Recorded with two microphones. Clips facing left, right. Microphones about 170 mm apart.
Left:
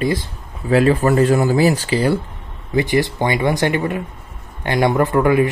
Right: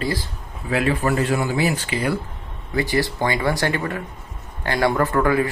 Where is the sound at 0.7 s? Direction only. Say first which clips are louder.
Left 6 dB; 40° left (ahead or behind).